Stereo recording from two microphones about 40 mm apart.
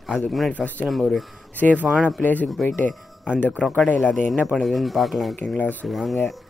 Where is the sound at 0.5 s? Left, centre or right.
Left.